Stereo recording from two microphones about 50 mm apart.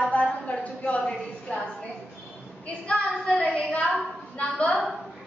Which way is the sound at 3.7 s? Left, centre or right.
Centre.